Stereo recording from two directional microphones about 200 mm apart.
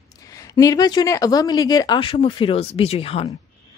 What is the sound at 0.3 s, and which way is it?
A woman's voice, 15° left (ahead or behind).